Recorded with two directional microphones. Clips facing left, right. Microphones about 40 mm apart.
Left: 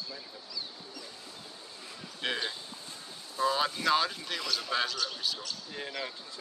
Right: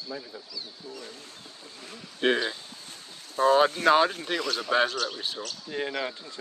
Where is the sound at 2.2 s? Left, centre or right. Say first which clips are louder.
Right 9 dB; right.